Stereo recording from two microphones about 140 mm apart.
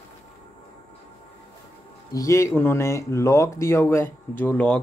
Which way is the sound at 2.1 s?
20° left (ahead or behind).